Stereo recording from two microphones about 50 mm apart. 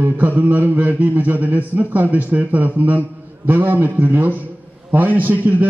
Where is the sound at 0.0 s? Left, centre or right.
Right.